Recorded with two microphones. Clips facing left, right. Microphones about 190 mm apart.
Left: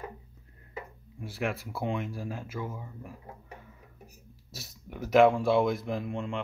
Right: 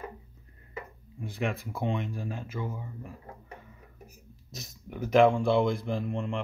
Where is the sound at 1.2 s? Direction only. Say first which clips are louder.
Right 1 dB; 5° left (ahead or behind).